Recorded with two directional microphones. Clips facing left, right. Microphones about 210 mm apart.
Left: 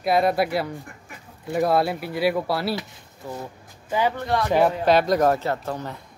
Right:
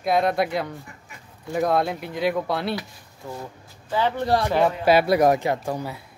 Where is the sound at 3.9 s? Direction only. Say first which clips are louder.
Even; 15° left (ahead or behind).